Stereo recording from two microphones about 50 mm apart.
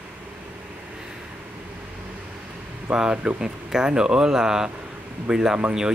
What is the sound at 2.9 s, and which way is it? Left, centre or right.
Speech, centre.